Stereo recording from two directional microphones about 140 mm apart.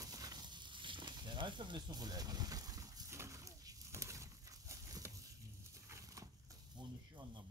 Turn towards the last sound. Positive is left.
turn(degrees=-35)  # may be behind; listen again after turning